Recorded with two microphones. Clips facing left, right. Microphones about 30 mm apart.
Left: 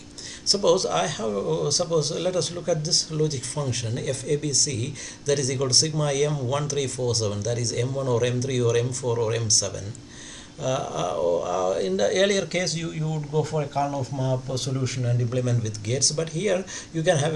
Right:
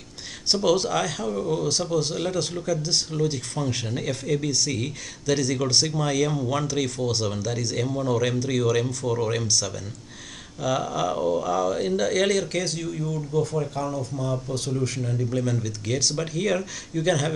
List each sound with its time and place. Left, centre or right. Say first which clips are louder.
0.5 s a man's voice: left 1 dB; centre
13.1 s speech: even; left
13.8 s speech: left 1 dB; centre
15.4 s speech: right 1 dB; centre